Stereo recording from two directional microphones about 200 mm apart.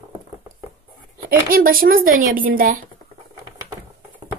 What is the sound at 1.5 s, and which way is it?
A woman's voice, 45° right (ahead or behind).